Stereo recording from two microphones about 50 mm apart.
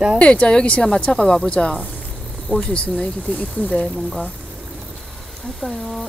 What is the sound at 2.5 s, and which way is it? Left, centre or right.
Speech, centre.